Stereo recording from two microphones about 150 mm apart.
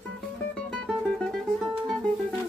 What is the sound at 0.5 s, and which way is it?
Music, 5° left (ahead or behind).